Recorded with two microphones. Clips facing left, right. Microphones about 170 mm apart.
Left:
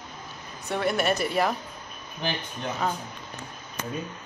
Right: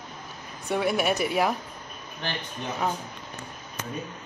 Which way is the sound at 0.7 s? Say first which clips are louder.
Right 1 dB; 10° right (ahead or behind).